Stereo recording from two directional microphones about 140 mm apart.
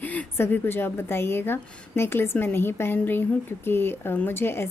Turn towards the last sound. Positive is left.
turn(degrees=15)  # may be behind; listen again after turning